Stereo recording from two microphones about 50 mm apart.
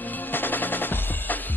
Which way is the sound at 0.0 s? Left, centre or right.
Left.